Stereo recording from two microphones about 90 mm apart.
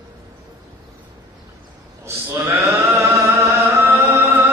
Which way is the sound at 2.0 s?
30° right (ahead or behind).